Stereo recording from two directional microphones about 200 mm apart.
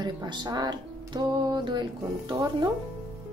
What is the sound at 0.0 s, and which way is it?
Music, 20° right (ahead or behind).